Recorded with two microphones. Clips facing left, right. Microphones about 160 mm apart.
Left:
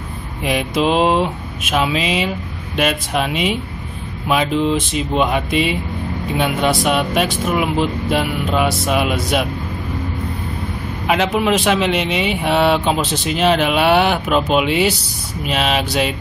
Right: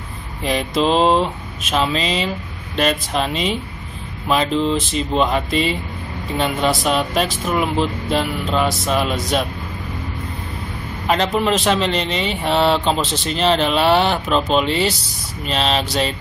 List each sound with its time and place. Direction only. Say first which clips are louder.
0.4 s speech: left 1 dB; 5° left (ahead or behind)
11.3 s speech: left 1 dB; 5° left (ahead or behind)